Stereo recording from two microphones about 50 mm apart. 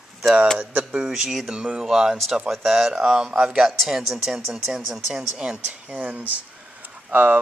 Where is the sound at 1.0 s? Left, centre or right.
Centre.